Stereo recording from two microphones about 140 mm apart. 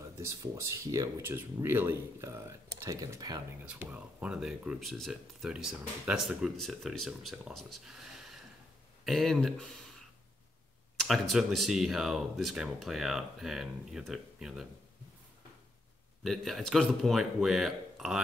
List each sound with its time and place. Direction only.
0.3 s speech: 20° right (ahead or behind)
3.6 s speech: 10° right (ahead or behind)
11.0 s speech: centre (ahead or behind)
16.3 s speech: centre (ahead or behind)